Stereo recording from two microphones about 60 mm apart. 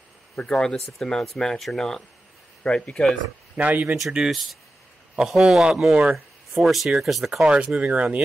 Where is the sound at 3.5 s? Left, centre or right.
Right.